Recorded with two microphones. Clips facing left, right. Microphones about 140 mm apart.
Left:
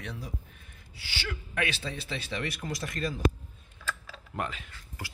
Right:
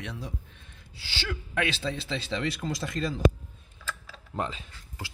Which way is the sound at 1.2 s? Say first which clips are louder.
Right 3 dB; 90° right.